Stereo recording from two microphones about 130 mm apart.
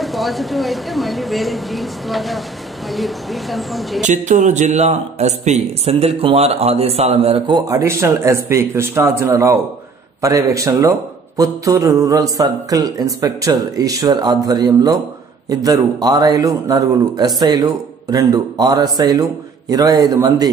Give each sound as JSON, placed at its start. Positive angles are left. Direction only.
{"t": 0.0, "sound": "speech", "side_deg": 0}
{"t": 4.0, "sound": "a man's voice", "side_deg": -70}